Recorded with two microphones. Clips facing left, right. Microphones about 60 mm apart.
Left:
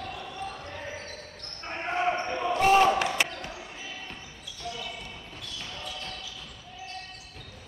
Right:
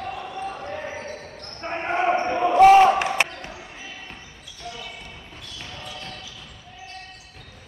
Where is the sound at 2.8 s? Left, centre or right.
Right.